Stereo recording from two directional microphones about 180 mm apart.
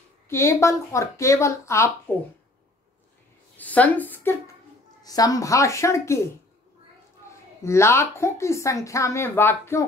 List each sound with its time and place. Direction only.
0.3 s speech: 15° left (ahead or behind)
3.5 s a woman's voice: 10° left (ahead or behind)
7.6 s speech: 15° left (ahead or behind)